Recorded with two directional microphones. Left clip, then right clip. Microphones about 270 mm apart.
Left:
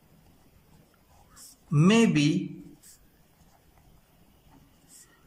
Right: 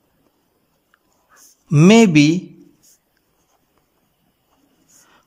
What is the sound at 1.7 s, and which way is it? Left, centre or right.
Speech, right.